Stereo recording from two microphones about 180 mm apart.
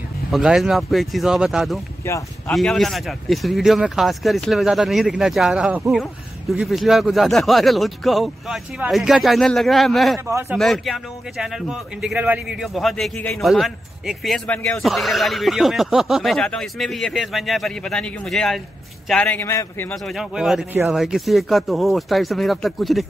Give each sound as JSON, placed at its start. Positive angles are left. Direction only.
{"t": 0.3, "sound": "a man's voice", "side_deg": 0}
{"t": 2.0, "sound": "speech", "side_deg": 15}
{"t": 2.5, "sound": "a man's voice", "side_deg": 0}
{"t": 10.2, "sound": "speech", "side_deg": -10}
{"t": 10.6, "sound": "a man's voice", "side_deg": 0}
{"t": 20.1, "sound": "a man's voice", "side_deg": 0}